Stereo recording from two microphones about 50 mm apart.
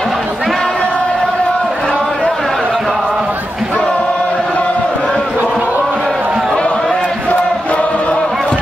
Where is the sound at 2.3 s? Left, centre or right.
Centre.